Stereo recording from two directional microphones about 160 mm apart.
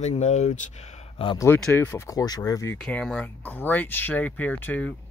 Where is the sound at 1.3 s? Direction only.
15° left (ahead or behind).